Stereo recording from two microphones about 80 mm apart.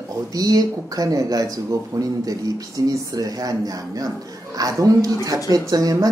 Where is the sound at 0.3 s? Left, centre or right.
Right.